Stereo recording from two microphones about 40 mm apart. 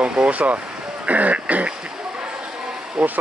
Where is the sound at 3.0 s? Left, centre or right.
Right.